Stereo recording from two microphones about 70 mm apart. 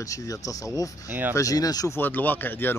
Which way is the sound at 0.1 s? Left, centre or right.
Left.